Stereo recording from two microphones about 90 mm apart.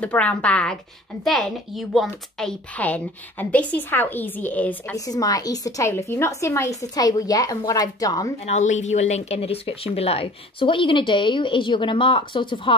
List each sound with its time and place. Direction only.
0.0 s a woman's voice: 15° left (ahead or behind)
1.2 s a woman's voice: centre (ahead or behind)
2.7 s a woman's voice: 15° left (ahead or behind)
4.9 s a woman's voice: 40° left (ahead or behind)
9.4 s a woman's voice: 90° left; by 12.7 s 70° left (ahead or behind)